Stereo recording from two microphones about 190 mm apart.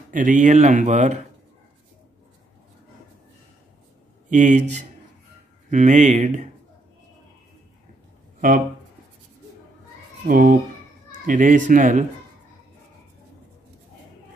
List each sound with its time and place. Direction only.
0.1 s speech: 45° right (ahead or behind)
4.3 s speech: 40° right (ahead or behind)
8.4 s speech: 45° right (ahead or behind)
10.2 s speech: 45° right (ahead or behind)